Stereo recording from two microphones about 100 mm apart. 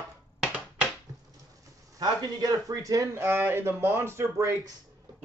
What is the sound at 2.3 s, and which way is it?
Speech, 40° right (ahead or behind).